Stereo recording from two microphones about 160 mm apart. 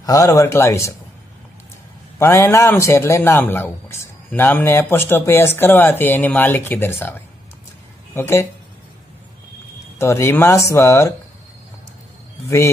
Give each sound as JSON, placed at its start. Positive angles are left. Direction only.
{"t": 0.0, "sound": "speech", "side_deg": 20}
{"t": 2.1, "sound": "a man's voice", "side_deg": 15}
{"t": 9.9, "sound": "a man's voice", "side_deg": 15}